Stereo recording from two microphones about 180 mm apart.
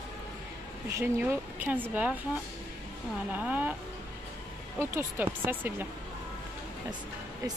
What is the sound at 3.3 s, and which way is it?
Speech, 10° right (ahead or behind).